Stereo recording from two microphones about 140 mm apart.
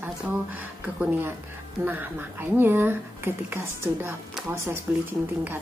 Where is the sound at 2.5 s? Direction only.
15° right (ahead or behind).